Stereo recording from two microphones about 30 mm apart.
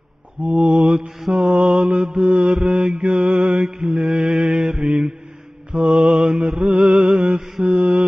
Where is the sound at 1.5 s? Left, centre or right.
Right.